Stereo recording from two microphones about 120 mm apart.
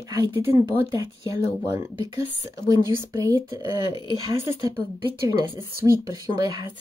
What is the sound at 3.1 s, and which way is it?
Speech, 30° right (ahead or behind).